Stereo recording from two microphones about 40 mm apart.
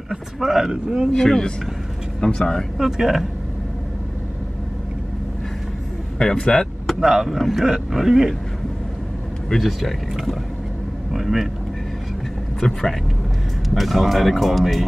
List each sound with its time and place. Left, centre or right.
0.1 s speech: centre
0.7 s speech: centre
1.1 s speech: centre
2.8 s speech: centre
6.1 s speech: centre
7.0 s speech: centre
9.6 s speech: centre
12.5 s speech: centre